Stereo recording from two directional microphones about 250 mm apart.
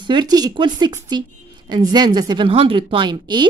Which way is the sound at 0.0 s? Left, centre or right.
Centre.